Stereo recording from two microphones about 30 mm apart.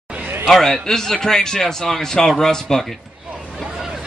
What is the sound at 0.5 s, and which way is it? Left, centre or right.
A man's voice, centre.